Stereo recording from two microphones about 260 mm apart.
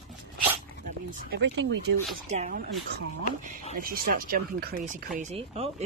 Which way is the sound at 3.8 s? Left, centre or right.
Right.